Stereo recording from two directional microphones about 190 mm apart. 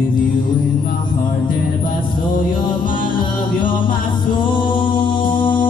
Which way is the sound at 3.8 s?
25° left (ahead or behind).